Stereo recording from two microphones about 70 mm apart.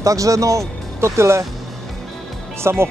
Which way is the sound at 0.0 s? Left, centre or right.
Right.